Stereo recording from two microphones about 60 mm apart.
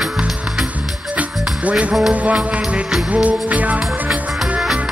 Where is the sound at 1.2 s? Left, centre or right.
Right.